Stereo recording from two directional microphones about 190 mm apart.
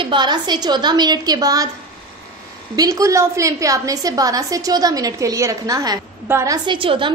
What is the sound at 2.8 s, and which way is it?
A woman's voice, 15° right (ahead or behind).